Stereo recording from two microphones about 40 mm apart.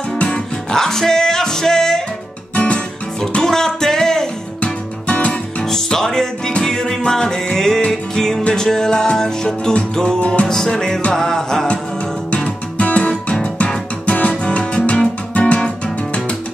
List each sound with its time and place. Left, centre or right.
0.7 s music: centre
2.5 s music: left
3.4 s music: centre
5.0 s music: left
5.7 s music: centre
10.2 s music: left
10.5 s music: centre
12.7 s music: left
15.3 s guitar: left